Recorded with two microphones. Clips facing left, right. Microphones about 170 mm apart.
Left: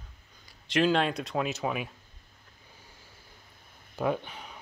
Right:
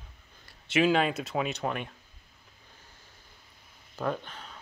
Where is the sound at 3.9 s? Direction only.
10° left (ahead or behind).